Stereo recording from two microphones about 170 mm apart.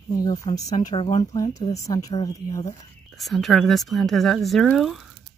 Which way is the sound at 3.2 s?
Centre (ahead or behind).